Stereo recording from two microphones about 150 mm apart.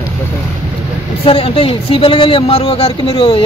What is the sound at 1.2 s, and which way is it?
Speech, 40° left (ahead or behind).